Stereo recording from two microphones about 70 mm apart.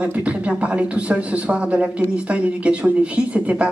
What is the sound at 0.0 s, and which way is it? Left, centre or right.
A man's voice, centre.